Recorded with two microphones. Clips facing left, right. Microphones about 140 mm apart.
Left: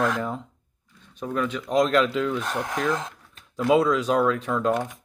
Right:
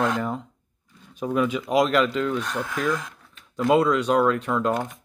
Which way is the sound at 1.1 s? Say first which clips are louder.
Right 4 dB; 10° right (ahead or behind).